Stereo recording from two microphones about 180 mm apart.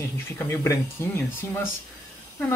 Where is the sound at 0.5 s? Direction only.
15° left (ahead or behind).